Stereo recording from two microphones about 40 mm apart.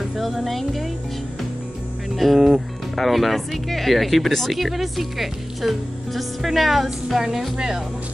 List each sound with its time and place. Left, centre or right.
0.2 s speech: centre
2.1 s speech: centre
7.2 s speech: centre